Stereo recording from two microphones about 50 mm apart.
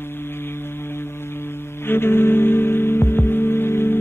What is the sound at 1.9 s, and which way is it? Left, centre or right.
Music, left.